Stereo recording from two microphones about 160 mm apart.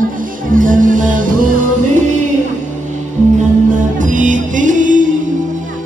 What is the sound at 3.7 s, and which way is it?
Music, 55° right (ahead or behind).